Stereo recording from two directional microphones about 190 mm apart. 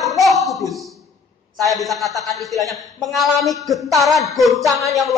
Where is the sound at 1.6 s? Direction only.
Centre (ahead or behind).